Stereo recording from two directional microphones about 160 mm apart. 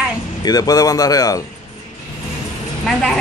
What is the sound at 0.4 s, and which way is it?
Speech, 25° left (ahead or behind).